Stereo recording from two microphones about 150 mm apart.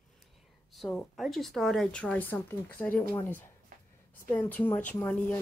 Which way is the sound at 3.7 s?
65° right (ahead or behind).